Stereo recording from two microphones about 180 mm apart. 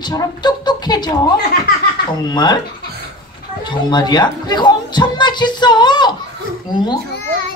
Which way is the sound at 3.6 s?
25° left (ahead or behind).